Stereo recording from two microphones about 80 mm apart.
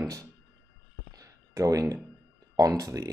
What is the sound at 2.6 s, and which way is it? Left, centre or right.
Speech, right.